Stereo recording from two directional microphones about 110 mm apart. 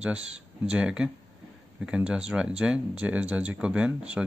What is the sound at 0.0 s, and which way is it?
Speech, 10° right (ahead or behind).